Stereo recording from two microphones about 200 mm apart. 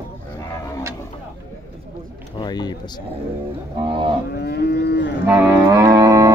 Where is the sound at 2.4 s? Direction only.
20° left (ahead or behind).